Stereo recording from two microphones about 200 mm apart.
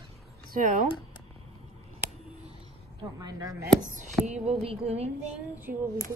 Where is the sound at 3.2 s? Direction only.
20° right (ahead or behind).